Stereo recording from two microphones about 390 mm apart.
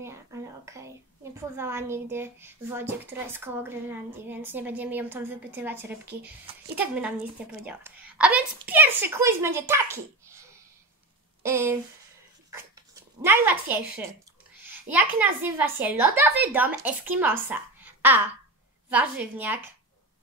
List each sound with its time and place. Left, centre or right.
0.0 s a woman's voice: centre
11.4 s speech: centre
13.2 s a woman's voice: centre